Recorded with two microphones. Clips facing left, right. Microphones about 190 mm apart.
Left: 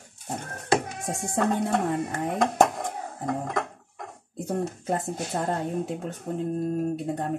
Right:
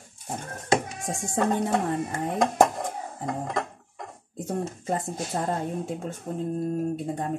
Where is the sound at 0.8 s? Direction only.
60° left (ahead or behind).